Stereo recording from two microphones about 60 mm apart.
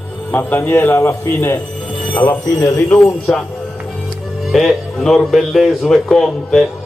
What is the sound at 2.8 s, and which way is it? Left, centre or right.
Speech, centre.